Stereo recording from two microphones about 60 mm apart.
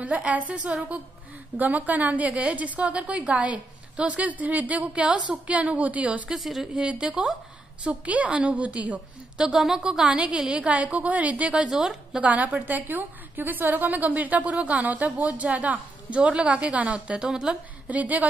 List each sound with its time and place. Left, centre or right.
0.0 s a woman's voice: right
6.3 s a woman's voice: centre
6.6 s a woman's voice: centre
9.4 s a woman's voice: centre
12.2 s a woman's voice: right
17.8 s a woman's voice: right